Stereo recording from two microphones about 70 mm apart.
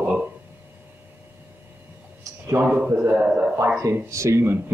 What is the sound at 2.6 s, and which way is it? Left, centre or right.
Speech, right.